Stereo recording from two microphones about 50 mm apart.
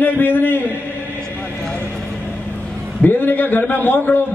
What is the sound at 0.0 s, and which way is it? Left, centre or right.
Speech, left.